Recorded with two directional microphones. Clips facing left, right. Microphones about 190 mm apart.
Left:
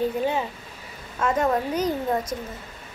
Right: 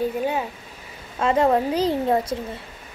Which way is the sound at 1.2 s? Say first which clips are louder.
Right 4 dB; 30° right (ahead or behind).